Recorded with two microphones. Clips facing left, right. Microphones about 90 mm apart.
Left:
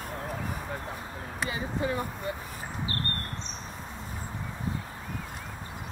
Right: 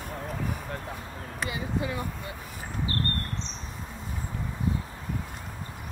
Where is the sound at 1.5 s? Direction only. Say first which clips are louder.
Left 1 dB; 40° left (ahead or behind).